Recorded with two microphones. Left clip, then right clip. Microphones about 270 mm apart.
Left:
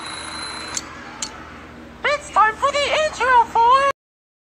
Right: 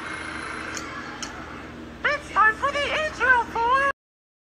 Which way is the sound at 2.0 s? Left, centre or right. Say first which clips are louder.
Left 3 dB; centre.